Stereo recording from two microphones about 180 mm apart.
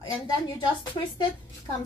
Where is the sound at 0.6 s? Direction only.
25° left (ahead or behind).